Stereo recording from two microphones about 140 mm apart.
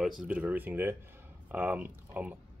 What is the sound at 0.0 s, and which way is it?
Speech, 5° right (ahead or behind).